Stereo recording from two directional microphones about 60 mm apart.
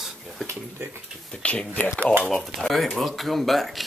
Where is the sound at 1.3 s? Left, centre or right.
Centre.